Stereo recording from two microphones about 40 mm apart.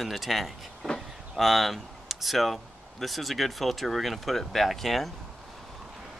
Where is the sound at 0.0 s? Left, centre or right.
Centre.